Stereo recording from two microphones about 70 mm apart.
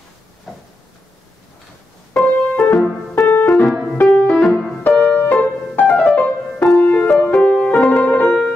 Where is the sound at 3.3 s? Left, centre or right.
Left.